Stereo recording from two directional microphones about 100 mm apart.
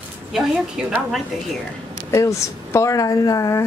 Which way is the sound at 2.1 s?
30° left (ahead or behind).